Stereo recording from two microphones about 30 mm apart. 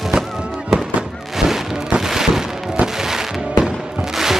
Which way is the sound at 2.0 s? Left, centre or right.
Centre.